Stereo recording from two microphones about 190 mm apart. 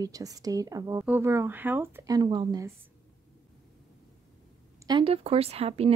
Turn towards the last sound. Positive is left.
turn(degrees=-30)  # may be behind; listen again after turning